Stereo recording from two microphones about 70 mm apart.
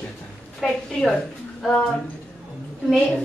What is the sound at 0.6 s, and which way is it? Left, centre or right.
Speech, centre.